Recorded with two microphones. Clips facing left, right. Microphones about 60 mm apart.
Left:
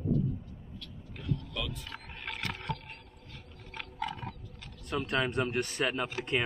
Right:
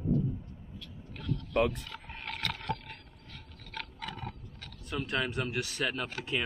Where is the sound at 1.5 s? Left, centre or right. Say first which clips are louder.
Right 10 dB; right.